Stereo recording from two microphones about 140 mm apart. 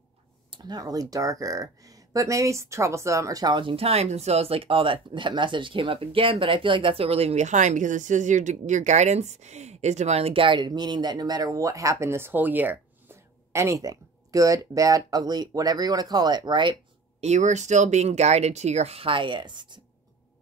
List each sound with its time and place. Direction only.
0.5 s speech: 30° right (ahead or behind)
17.2 s speech: 55° right (ahead or behind); by 19.8 s 35° right (ahead or behind)